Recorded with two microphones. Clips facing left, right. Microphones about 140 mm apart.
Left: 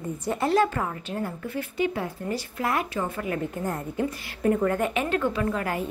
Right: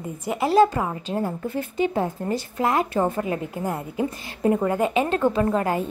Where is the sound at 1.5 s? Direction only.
30° right (ahead or behind).